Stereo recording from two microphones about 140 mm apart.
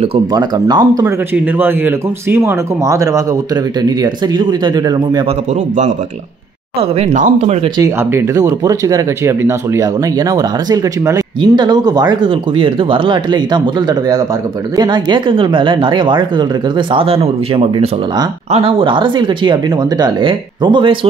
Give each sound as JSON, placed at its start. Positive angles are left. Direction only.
{"t": 0.3, "sound": "speech", "side_deg": -30}
{"t": 1.0, "sound": "a man's voice", "side_deg": -10}
{"t": 6.8, "sound": "speech", "side_deg": -50}
{"t": 8.0, "sound": "speech", "side_deg": -15}